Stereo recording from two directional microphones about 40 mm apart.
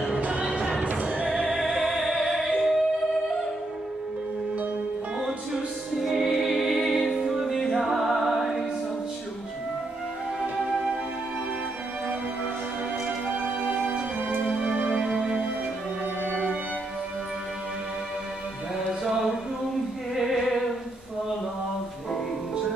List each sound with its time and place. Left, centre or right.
0.0 s music: right
1.5 s music: centre
5.9 s music: centre
14.4 s music: right